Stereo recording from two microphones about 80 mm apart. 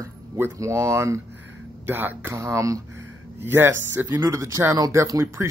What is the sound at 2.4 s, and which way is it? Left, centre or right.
Speech, right.